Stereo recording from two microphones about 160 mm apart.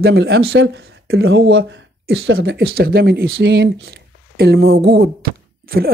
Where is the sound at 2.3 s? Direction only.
75° right (ahead or behind).